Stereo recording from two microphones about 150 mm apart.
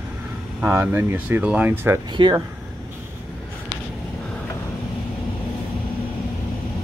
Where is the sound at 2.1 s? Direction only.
30° right (ahead or behind).